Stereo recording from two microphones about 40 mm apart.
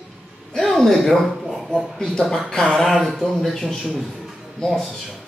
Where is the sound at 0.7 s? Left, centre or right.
Centre.